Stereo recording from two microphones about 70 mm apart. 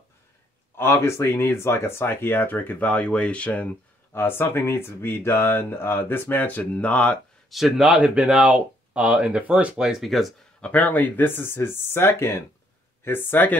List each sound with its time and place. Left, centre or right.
0.7 s speech: left; by 3.6 s centre
4.1 s speech: left
7.4 s speech: centre
7.9 s speech: centre
10.6 s speech: left